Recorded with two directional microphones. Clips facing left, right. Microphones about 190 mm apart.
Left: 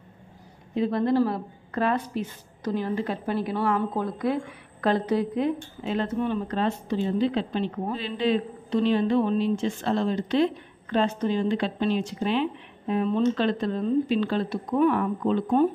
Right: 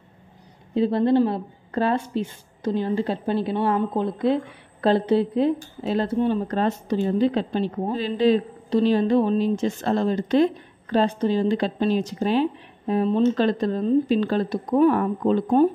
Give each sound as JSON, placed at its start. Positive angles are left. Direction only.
{"t": 0.7, "sound": "a woman's voice", "side_deg": -30}
{"t": 6.4, "sound": "a woman's voice", "side_deg": -45}